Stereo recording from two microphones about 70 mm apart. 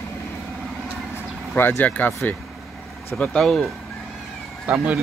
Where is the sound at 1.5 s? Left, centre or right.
Left.